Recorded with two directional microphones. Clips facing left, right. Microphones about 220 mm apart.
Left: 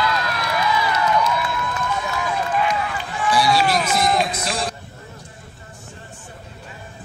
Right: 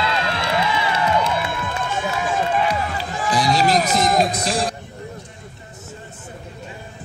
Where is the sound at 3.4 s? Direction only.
40° right (ahead or behind).